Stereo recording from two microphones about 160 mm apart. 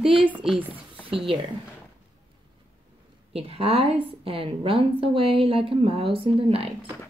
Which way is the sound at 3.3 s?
35° right (ahead or behind).